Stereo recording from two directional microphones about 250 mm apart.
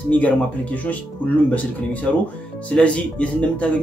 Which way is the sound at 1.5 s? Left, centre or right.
Centre.